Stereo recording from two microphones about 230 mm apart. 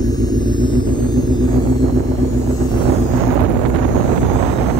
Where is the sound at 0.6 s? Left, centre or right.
Centre.